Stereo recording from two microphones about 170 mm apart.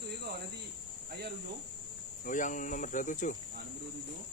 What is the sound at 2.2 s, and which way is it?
Speech, 50° left (ahead or behind).